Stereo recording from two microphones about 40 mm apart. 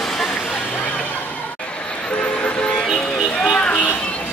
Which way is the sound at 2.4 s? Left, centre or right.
Left.